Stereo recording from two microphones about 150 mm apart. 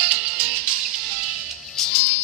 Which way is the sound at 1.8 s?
5° left (ahead or behind).